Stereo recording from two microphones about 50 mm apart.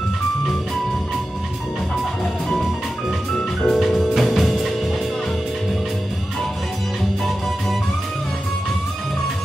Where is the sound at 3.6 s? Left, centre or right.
Centre.